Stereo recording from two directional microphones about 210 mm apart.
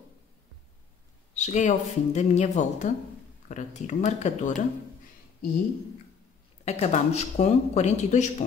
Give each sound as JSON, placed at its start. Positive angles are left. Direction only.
{"t": 1.3, "sound": "speech", "side_deg": 35}
{"t": 6.6, "sound": "speech", "side_deg": 30}